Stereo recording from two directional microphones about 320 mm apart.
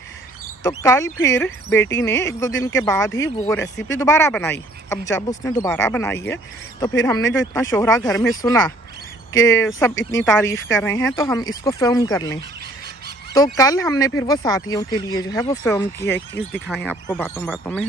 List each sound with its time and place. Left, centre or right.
0.7 s speech: centre
17.1 s speech: centre